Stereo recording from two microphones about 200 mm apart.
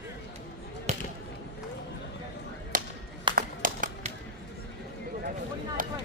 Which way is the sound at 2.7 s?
45° right (ahead or behind).